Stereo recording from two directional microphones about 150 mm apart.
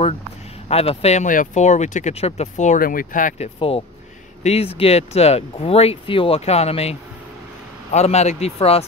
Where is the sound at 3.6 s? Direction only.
40° left (ahead or behind).